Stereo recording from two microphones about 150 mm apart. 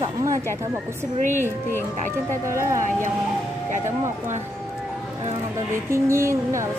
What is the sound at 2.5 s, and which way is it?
Speech, 20° right (ahead or behind).